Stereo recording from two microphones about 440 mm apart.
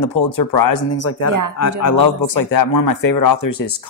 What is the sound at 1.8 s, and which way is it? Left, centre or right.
Speech, left.